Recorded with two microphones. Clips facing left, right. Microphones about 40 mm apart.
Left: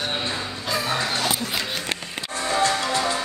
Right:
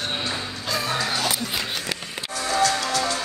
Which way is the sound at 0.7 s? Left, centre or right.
Centre.